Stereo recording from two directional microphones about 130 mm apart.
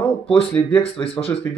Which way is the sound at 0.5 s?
10° left (ahead or behind).